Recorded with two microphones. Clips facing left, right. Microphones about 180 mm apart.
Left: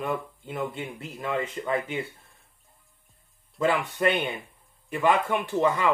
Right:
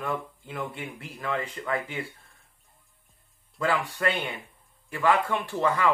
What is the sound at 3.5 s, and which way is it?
Speech, 20° left (ahead or behind).